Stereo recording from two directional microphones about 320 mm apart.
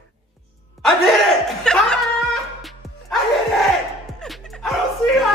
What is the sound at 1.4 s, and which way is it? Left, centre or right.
Chuckle, centre.